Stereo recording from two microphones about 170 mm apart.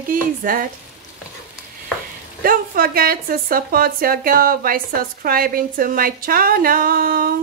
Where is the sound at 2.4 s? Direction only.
60° right (ahead or behind).